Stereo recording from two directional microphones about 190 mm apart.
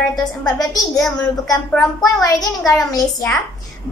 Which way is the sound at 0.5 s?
20° left (ahead or behind).